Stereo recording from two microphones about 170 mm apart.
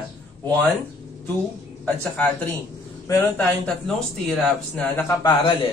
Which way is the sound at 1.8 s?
10° left (ahead or behind).